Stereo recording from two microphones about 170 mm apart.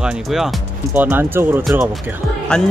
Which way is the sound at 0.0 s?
5° right (ahead or behind).